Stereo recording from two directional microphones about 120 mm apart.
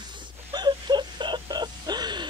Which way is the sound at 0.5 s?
35° right (ahead or behind).